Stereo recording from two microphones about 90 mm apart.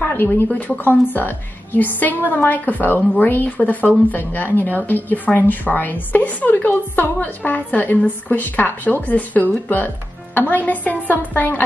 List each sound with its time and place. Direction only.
0.0 s a woman's voice: 20° left (ahead or behind)